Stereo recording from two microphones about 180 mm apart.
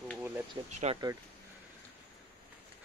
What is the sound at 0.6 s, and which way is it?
Speech, 25° right (ahead or behind).